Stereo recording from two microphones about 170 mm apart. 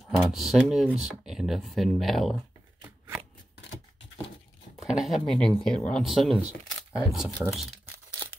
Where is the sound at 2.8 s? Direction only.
15° right (ahead or behind).